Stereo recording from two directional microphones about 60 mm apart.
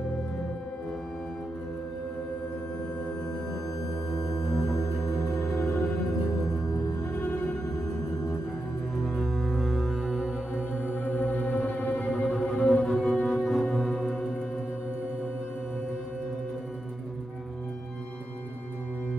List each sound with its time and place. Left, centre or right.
4.1 s music: centre
7.1 s music: centre
8.9 s music: centre
11.1 s music: left
12.4 s music: centre